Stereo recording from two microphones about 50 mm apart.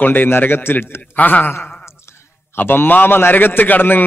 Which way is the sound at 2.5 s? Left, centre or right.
Left.